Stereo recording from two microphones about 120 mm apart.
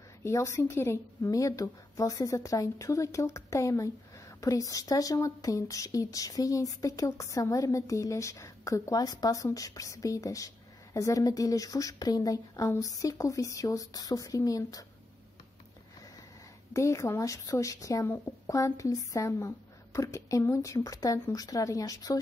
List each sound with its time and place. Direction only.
0.2 s speech: 25° left (ahead or behind)
16.7 s speech: 25° left (ahead or behind)